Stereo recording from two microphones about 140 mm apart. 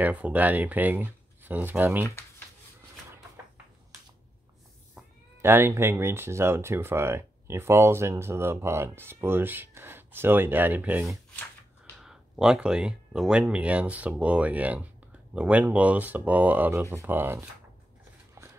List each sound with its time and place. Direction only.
0.0 s speech: 10° right (ahead or behind)
2.0 s speech: 15° left (ahead or behind)
5.4 s speech: 15° right (ahead or behind)